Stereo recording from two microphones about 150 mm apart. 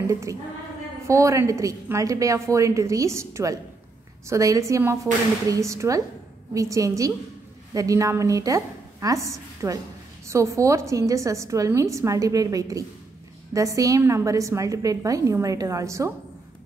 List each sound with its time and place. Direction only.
0.1 s a woman's voice: 20° right (ahead or behind)